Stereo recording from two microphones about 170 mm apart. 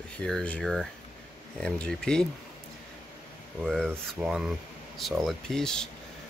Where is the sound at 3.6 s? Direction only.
5° left (ahead or behind).